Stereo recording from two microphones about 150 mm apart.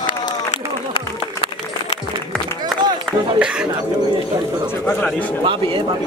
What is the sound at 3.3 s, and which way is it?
Speech, 5° right (ahead or behind).